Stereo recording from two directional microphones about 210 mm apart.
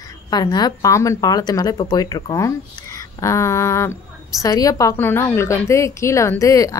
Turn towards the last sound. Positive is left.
turn(degrees=15)  # may be behind; listen again after turning